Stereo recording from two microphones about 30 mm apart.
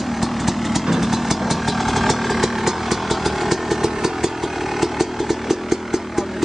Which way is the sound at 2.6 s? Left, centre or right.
Centre.